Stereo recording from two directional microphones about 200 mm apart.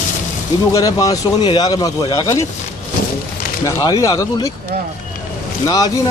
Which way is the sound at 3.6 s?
15° left (ahead or behind).